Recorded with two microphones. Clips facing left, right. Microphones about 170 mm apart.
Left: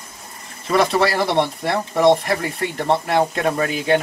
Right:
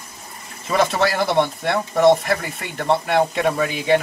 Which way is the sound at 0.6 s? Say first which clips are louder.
Left 2 dB; centre (ahead or behind).